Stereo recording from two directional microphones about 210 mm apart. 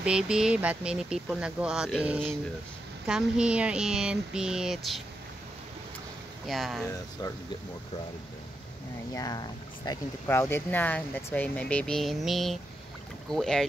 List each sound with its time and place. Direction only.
0.0 s speech: 5° right (ahead or behind)
6.4 s speech: centre (ahead or behind)
6.9 s speech: 15° left (ahead or behind)
9.1 s speech: 20° left (ahead or behind); by 13.7 s centre (ahead or behind)